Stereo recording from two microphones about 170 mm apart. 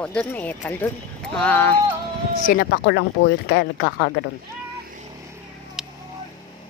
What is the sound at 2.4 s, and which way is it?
Speech, 55° left (ahead or behind).